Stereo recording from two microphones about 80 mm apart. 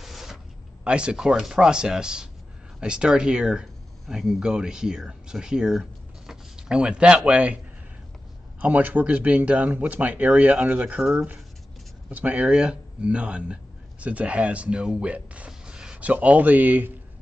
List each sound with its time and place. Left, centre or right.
0.0 s a sound: centre
0.8 s speech: centre
12.1 s speech: centre